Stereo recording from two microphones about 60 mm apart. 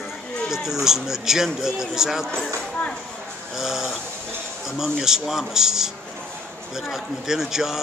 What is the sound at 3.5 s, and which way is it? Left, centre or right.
A man's voice, centre.